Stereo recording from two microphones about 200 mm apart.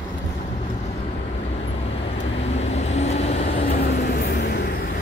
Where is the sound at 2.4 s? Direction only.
35° left (ahead or behind).